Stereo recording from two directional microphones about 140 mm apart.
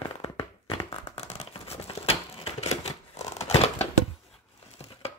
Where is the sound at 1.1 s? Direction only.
50° left (ahead or behind).